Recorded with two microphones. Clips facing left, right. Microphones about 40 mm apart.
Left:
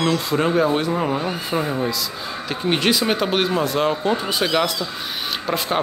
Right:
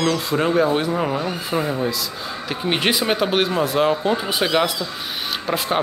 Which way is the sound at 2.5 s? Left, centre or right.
Centre.